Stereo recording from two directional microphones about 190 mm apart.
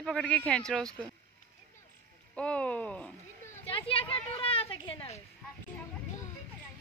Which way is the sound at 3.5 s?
30° left (ahead or behind).